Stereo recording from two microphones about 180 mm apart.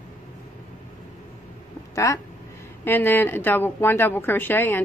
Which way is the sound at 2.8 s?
10° left (ahead or behind).